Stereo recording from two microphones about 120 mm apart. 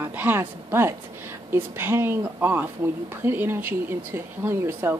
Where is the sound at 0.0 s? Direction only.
15° right (ahead or behind).